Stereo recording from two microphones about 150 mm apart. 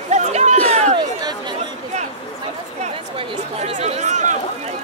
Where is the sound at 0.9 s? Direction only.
30° right (ahead or behind).